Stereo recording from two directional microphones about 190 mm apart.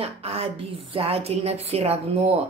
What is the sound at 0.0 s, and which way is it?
A woman's voice, 30° right (ahead or behind).